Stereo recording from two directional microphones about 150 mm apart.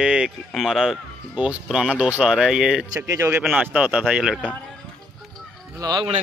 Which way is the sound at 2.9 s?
20° right (ahead or behind).